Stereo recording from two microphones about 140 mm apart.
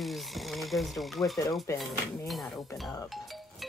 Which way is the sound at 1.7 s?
20° left (ahead or behind).